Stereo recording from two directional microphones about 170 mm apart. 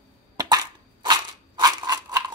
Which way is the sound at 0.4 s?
25° right (ahead or behind).